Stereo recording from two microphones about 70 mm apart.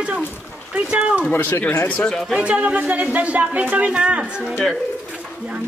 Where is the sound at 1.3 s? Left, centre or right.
Left.